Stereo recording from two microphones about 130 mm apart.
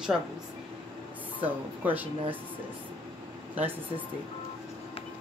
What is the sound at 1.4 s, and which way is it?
Speech, 15° right (ahead or behind).